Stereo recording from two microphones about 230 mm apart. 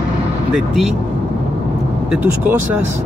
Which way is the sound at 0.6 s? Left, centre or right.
Centre.